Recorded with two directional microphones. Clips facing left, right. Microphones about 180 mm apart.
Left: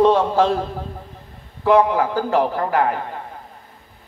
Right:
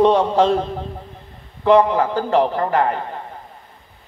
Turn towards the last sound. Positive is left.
turn(degrees=10)  # may be behind; listen again after turning